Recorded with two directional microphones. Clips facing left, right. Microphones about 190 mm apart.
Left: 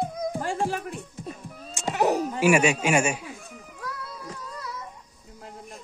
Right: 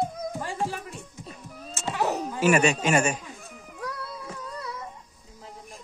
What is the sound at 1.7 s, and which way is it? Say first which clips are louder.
Dog: left 4 dB; 15° left (ahead or behind).